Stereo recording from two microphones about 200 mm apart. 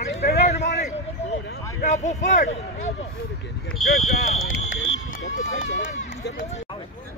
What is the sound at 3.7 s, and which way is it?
Speech, centre (ahead or behind).